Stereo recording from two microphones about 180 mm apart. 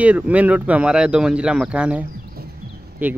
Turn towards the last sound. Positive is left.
turn(degrees=-10)  # may be behind; listen again after turning